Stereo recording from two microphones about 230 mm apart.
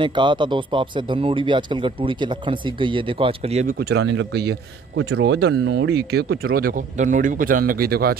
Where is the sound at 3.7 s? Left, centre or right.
Right.